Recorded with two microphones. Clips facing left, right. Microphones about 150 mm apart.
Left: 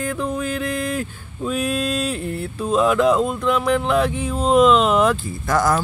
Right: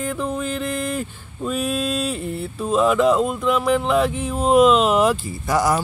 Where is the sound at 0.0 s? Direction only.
Centre (ahead or behind).